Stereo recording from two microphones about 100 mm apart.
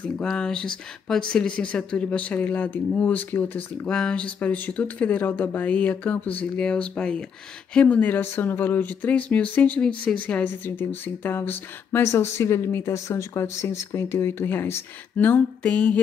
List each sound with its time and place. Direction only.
0.0 s speech: 10° left (ahead or behind)